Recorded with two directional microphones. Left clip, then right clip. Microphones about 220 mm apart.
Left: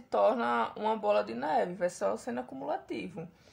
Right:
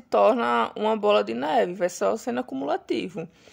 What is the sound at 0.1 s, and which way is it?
A woman's voice, 35° right (ahead or behind).